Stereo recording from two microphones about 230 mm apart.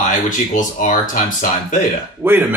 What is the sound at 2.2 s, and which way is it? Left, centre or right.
Speech, centre.